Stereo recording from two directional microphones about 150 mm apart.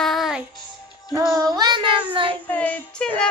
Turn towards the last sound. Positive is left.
turn(degrees=10)  # may be behind; listen again after turning